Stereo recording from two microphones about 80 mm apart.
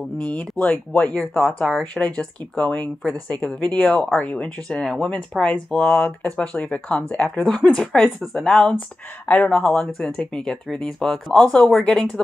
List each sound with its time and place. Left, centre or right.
0.2 s speech: centre
1.6 s speech: centre
9.5 s speech: centre